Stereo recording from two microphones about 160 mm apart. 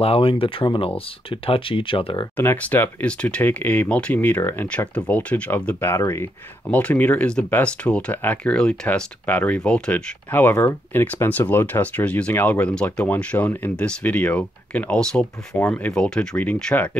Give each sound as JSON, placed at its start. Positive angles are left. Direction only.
{"t": 0.0, "sound": "speech", "side_deg": 35}
{"t": 2.3, "sound": "speech", "side_deg": 10}